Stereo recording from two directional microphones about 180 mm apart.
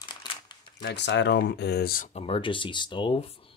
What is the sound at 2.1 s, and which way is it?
Speech, 30° left (ahead or behind).